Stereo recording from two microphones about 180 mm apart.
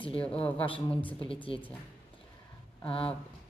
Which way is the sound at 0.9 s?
10° left (ahead or behind).